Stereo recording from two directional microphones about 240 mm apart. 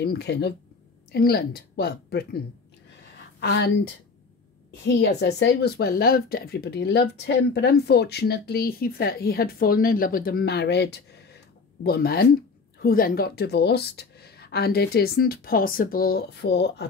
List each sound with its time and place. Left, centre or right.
0.0 s speech: left